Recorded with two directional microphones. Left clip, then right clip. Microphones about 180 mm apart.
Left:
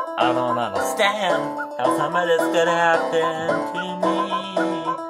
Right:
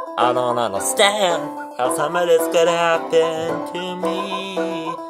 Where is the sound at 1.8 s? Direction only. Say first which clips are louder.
Right 1 dB; centre (ahead or behind).